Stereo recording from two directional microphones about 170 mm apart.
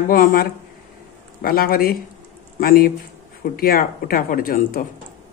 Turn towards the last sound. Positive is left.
turn(degrees=60)  # may be behind; listen again after turning